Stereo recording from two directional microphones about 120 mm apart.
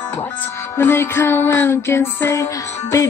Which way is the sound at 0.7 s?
20° left (ahead or behind).